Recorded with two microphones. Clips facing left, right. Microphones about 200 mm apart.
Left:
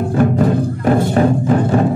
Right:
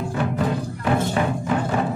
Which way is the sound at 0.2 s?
45° left (ahead or behind).